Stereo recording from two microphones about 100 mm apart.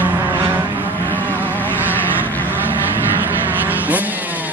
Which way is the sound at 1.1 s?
20° left (ahead or behind).